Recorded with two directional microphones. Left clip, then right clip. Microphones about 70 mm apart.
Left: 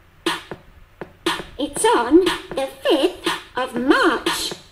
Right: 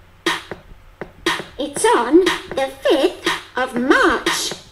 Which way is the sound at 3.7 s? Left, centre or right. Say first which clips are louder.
Right 2 dB; left.